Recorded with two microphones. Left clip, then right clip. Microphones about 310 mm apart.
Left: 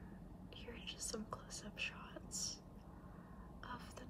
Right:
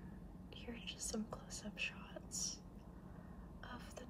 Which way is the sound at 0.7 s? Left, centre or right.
Centre.